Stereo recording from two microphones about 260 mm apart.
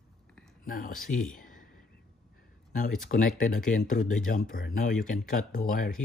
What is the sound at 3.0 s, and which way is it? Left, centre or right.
Speech, left.